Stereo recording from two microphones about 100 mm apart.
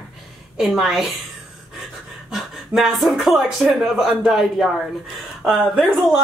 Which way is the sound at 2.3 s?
Centre (ahead or behind).